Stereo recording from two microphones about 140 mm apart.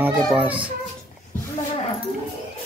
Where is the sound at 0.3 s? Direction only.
10° right (ahead or behind).